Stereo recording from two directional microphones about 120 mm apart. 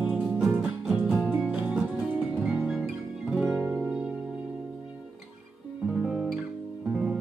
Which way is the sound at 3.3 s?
10° right (ahead or behind).